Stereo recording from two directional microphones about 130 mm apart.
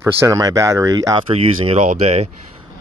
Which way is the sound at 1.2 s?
50° right (ahead or behind).